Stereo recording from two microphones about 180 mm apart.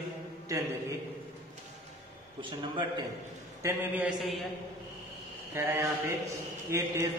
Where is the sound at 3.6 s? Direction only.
10° right (ahead or behind).